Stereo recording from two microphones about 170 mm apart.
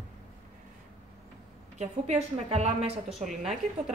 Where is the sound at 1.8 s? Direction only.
40° right (ahead or behind).